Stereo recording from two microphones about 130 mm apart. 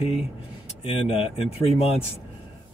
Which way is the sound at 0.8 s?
45° left (ahead or behind).